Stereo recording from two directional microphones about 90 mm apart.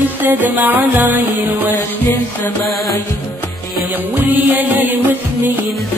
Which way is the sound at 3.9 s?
20° right (ahead or behind).